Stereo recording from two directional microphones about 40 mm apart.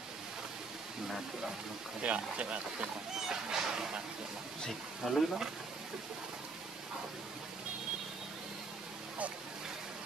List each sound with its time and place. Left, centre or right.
2.0 s speech: right
3.2 s speech: centre
4.6 s speech: centre